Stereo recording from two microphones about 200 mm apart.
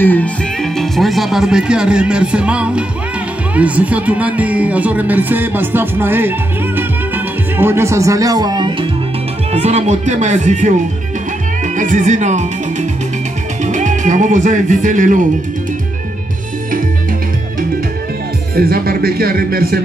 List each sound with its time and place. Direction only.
0.0 s speech: 10° left (ahead or behind); by 6.3 s 10° right (ahead or behind)
6.8 s music: 10° right (ahead or behind)
9.5 s speech: 35° right (ahead or behind)
13.7 s speech: 40° right (ahead or behind)
18.6 s a man's voice: 50° right (ahead or behind)